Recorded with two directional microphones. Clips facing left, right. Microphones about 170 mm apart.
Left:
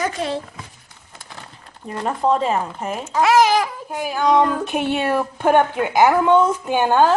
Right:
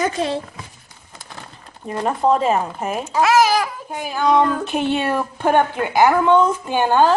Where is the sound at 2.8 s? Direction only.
10° right (ahead or behind).